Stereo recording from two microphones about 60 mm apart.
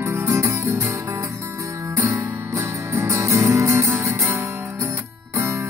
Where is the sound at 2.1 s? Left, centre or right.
Right.